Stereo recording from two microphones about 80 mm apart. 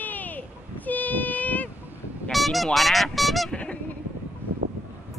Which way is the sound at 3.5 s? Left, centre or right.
Centre.